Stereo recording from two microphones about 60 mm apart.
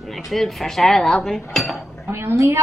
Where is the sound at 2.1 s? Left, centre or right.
Right.